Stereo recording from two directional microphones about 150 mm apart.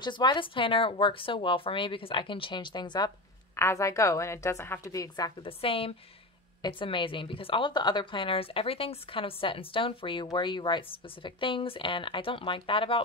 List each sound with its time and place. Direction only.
0.0 s a woman's voice: 30° left (ahead or behind)
3.5 s a woman's voice: 20° left (ahead or behind)
5.4 s a woman's voice: 40° left (ahead or behind)